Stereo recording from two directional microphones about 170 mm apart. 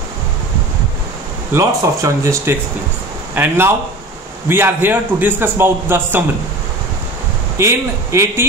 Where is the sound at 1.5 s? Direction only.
15° right (ahead or behind).